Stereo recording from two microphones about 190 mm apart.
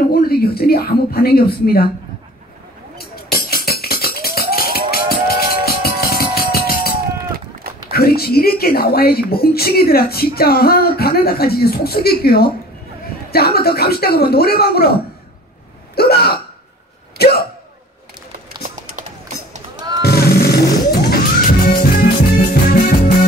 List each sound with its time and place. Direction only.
0.1 s speech: 55° left (ahead or behind)
3.0 s music: 55° left (ahead or behind)
7.9 s speech: 55° left (ahead or behind)
17.2 s hiccup: 55° left (ahead or behind)
18.8 s music: 40° right (ahead or behind)
20.0 s music: 55° left (ahead or behind)